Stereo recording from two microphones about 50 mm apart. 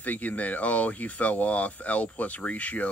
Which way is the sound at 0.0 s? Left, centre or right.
Left.